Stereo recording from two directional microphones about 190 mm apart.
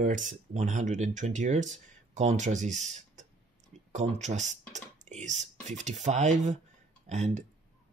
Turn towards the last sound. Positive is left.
turn(degrees=-35)  # may be behind; listen again after turning